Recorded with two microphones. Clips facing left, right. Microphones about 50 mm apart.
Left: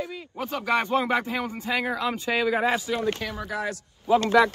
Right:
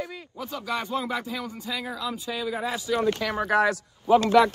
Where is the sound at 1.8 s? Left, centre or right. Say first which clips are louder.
Left 6 dB; left.